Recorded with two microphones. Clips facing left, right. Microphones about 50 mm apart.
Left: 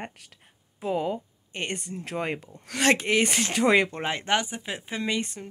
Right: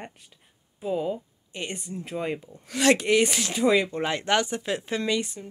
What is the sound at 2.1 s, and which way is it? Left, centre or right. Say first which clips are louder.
Speech: even; left.